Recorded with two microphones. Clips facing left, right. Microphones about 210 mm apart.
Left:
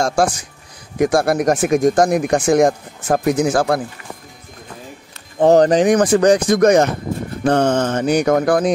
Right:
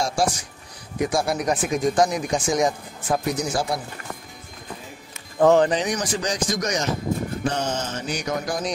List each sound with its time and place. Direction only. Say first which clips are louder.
0.0 s speech: left 6 dB; 50° left (ahead or behind)
5.4 s speech: left 6 dB; 40° left (ahead or behind); by 8.7 s 55° left (ahead or behind)